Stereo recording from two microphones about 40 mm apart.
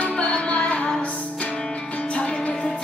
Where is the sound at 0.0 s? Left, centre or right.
Left.